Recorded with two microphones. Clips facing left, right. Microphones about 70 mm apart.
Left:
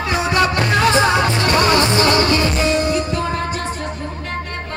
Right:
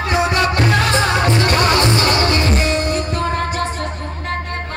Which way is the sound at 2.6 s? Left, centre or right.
Right.